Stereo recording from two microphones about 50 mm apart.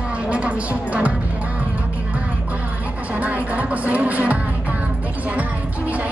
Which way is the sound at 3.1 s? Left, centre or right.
Right.